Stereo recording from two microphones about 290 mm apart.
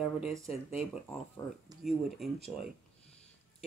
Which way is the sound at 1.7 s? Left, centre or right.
Centre.